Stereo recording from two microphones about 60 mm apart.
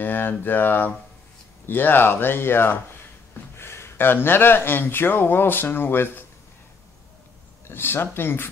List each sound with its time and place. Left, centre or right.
0.0 s speech: left
7.6 s speech: left